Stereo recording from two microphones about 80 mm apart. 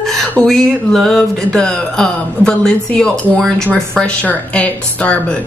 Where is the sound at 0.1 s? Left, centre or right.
Centre.